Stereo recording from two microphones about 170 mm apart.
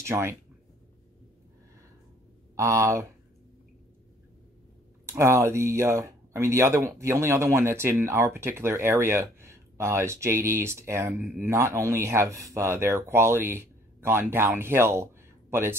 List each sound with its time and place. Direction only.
0.0 s speech: 15° right (ahead or behind)
2.5 s speech: 15° right (ahead or behind)
5.0 s speech: 15° right (ahead or behind)